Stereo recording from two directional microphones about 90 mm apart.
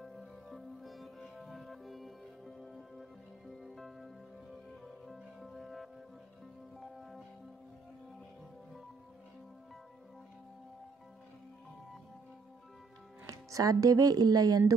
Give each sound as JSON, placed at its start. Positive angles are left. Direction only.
{"t": 0.0, "sound": "music", "side_deg": 0}
{"t": 13.3, "sound": "speech", "side_deg": -40}